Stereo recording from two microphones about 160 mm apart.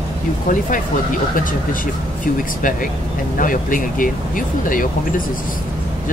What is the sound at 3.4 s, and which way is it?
Speech, 55° left (ahead or behind).